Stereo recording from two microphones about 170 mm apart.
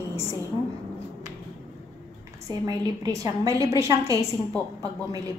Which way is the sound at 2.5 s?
20° right (ahead or behind).